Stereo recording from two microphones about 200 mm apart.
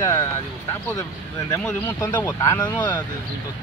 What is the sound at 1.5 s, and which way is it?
Speech, 5° left (ahead or behind).